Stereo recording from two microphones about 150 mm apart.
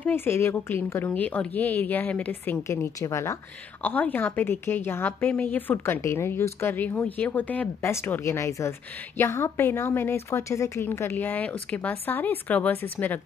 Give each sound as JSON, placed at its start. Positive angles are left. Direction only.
{"t": 0.0, "sound": "a woman's voice", "side_deg": 15}